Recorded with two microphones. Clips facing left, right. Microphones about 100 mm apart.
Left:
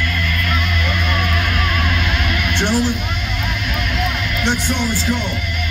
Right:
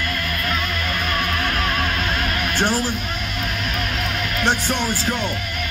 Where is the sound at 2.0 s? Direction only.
40° right (ahead or behind).